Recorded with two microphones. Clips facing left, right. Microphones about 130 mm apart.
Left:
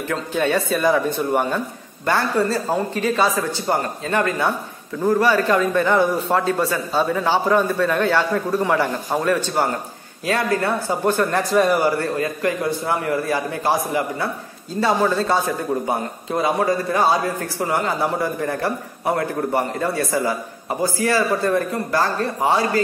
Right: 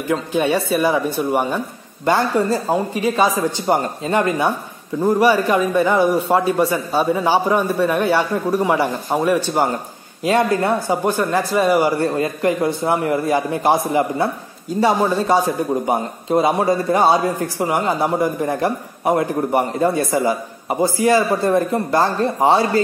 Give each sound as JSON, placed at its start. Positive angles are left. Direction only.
{"t": 0.1, "sound": "speech", "side_deg": -10}
{"t": 12.0, "sound": "a man's voice", "side_deg": -25}